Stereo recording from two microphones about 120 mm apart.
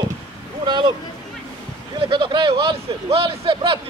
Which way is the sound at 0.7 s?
40° right (ahead or behind).